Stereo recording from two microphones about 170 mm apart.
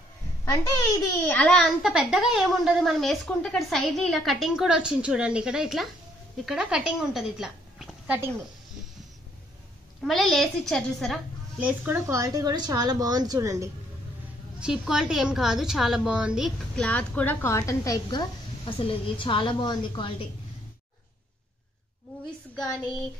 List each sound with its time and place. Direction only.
0.5 s a woman's voice: 20° left (ahead or behind)
1.3 s a woman's voice: 5° left (ahead or behind)
10.0 s a woman's voice: centre (ahead or behind)
11.6 s a woman's voice: 10° right (ahead or behind)
14.6 s a woman's voice: 5° right (ahead or behind); by 18.2 s 20° left (ahead or behind)
18.7 s a woman's voice: 30° left (ahead or behind)